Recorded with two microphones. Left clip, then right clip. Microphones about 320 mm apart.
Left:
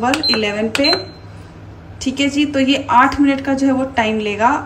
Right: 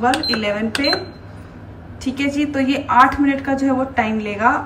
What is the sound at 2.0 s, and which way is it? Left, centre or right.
A woman's voice, centre.